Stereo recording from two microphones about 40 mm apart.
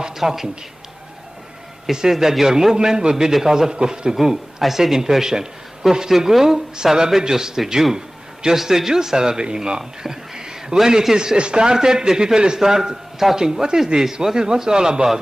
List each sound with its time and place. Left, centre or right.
0.2 s speech: centre
1.9 s speech: centre